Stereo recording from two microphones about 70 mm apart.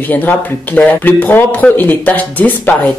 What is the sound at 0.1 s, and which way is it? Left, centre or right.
Speech, left.